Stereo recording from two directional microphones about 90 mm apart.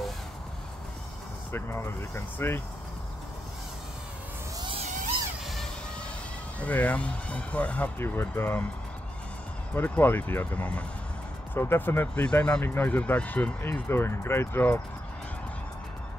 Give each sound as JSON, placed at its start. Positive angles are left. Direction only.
{"t": 1.5, "sound": "speech", "side_deg": 25}
{"t": 6.6, "sound": "speech", "side_deg": 15}
{"t": 8.0, "sound": "speech", "side_deg": 25}
{"t": 9.8, "sound": "speech", "side_deg": 20}
{"t": 12.3, "sound": "speech", "side_deg": 10}